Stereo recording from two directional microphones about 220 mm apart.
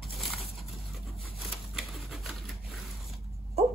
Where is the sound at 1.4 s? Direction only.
Centre (ahead or behind).